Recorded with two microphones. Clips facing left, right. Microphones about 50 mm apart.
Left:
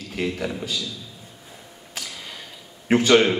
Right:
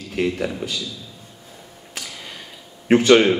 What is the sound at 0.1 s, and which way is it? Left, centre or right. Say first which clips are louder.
Speech: right 4 dB; centre.